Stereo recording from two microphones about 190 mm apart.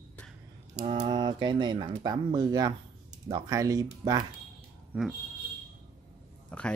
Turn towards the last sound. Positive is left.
turn(degrees=5)  # may be behind; listen again after turning